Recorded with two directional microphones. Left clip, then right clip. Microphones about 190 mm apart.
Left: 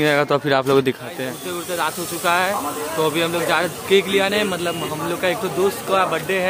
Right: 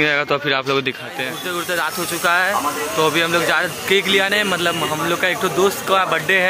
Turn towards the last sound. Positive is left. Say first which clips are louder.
# right 3 dB
turn(degrees=0)  # may be behind; listen again after turning